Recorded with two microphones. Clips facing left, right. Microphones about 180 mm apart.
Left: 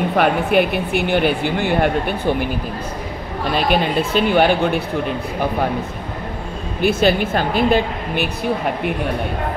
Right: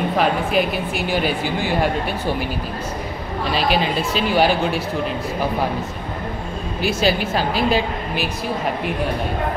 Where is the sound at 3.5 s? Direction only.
50° left (ahead or behind).